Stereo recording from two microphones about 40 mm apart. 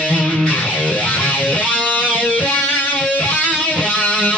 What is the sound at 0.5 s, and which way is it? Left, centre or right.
Music, left.